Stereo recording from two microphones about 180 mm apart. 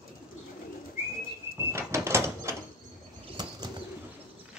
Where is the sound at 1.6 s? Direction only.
15° right (ahead or behind).